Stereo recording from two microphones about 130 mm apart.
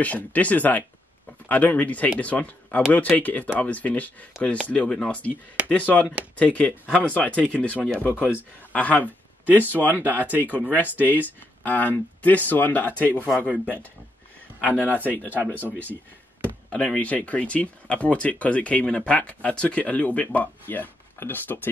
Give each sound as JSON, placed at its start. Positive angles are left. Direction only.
{"t": 0.0, "sound": "speech", "side_deg": 10}
{"t": 9.5, "sound": "speech", "side_deg": -15}
{"t": 11.6, "sound": "speech", "side_deg": 15}
{"t": 13.5, "sound": "speech", "side_deg": -15}
{"t": 15.0, "sound": "speech", "side_deg": 15}